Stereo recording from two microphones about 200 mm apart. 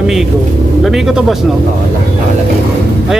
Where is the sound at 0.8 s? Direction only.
Centre (ahead or behind).